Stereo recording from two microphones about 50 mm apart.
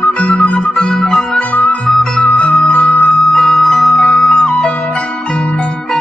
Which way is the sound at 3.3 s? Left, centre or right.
Centre.